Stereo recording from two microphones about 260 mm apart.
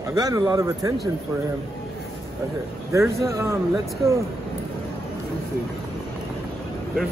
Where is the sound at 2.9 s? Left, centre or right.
Centre.